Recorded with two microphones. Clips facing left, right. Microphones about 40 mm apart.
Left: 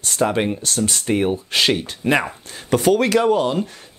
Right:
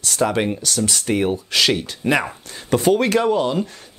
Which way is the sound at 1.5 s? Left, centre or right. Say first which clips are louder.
Even; left.